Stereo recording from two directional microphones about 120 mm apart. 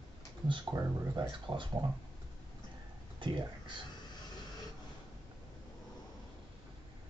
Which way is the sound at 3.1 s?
40° right (ahead or behind).